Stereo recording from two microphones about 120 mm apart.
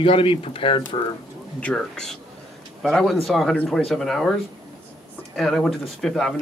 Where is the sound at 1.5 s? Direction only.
10° left (ahead or behind).